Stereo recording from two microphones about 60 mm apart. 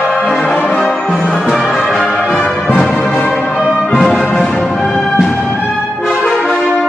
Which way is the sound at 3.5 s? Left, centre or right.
Centre.